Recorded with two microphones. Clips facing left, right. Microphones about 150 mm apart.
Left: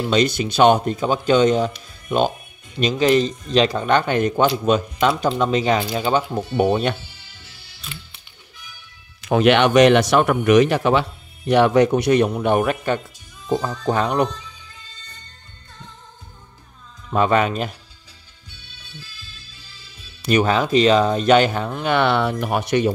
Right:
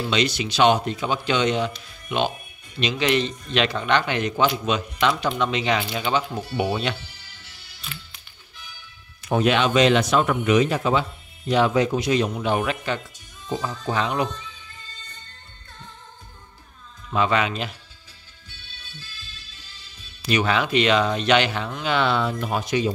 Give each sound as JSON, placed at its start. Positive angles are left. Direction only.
{"t": 0.1, "sound": "speech", "side_deg": 50}
{"t": 7.9, "sound": "music", "side_deg": 25}
{"t": 9.2, "sound": "speech", "side_deg": 85}
{"t": 17.1, "sound": "speech", "side_deg": 45}
{"t": 20.2, "sound": "speech", "side_deg": 40}